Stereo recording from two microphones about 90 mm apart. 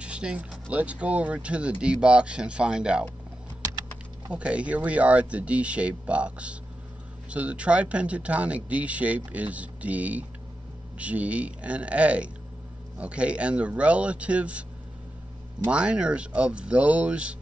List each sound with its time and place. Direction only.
0.0 s speech: 10° right (ahead or behind)
4.3 s speech: 10° right (ahead or behind)